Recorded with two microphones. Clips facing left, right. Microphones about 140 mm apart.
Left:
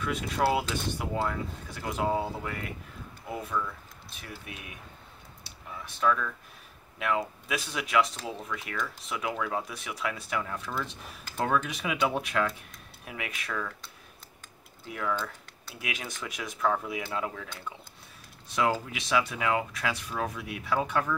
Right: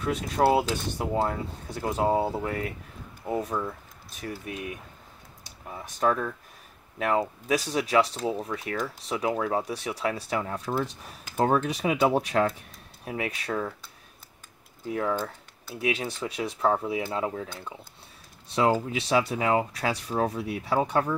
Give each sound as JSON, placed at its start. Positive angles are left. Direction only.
{"t": 0.0, "sound": "speech", "side_deg": -35}
{"t": 14.9, "sound": "speech", "side_deg": -35}
{"t": 18.9, "sound": "speech", "side_deg": -35}